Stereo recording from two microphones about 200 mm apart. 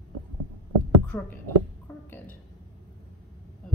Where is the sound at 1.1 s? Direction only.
10° left (ahead or behind).